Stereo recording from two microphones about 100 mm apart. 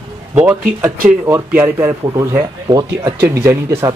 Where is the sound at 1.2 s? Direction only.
25° right (ahead or behind).